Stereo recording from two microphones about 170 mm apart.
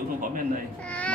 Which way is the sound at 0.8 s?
5° left (ahead or behind).